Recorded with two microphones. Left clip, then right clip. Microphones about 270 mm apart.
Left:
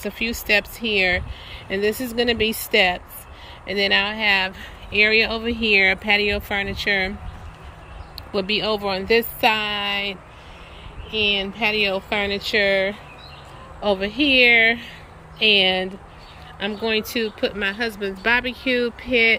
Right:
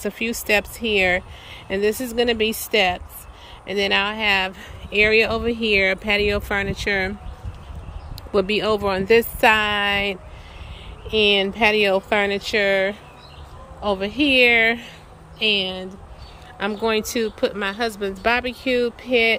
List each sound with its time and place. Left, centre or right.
0.0 s speech: centre
8.2 s speech: centre